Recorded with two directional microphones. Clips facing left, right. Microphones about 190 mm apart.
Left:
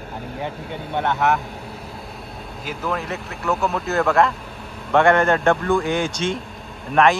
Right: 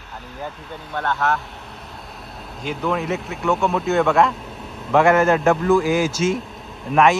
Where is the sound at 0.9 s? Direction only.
20° left (ahead or behind).